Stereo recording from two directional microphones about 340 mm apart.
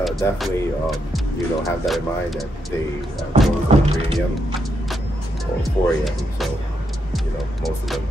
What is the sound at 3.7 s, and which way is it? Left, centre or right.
Music, centre.